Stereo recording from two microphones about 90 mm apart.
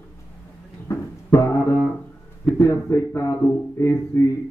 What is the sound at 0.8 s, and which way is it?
Music, 35° left (ahead or behind).